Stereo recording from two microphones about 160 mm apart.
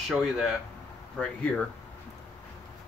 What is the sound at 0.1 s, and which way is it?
Speech, centre (ahead or behind).